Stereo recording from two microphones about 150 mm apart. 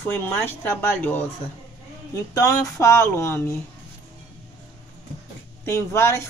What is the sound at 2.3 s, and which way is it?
Speech, 20° left (ahead or behind).